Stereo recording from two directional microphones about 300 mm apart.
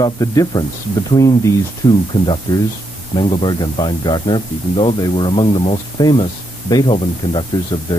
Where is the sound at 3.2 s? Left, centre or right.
Centre.